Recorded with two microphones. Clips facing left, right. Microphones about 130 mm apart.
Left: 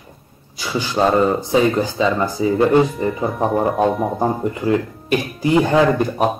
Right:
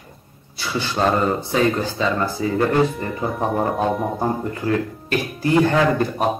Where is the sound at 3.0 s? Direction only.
5° left (ahead or behind).